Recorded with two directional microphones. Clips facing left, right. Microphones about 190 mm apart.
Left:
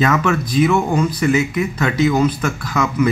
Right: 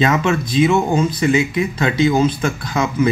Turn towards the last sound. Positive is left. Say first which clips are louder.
# even
turn(degrees=-30)  # may be behind; listen again after turning